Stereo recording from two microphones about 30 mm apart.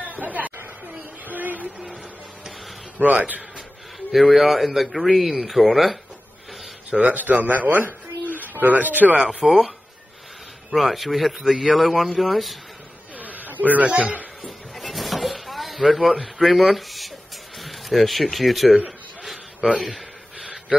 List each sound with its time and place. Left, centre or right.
0.1 s chatter: right
3.0 s a man's voice: right
4.1 s a man's voice: centre
6.9 s speech: right
7.2 s speech: right
9.2 s speech: right
10.7 s a man's voice: centre
11.3 s a man's voice: centre
12.0 s a man's voice: centre
13.2 s a man's voice: right
14.4 s a sound: centre
16.3 s a man's voice: centre